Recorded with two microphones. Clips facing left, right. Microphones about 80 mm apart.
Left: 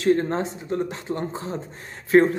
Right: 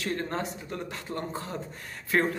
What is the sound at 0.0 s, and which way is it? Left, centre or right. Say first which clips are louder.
Speech: left 10 dB; left.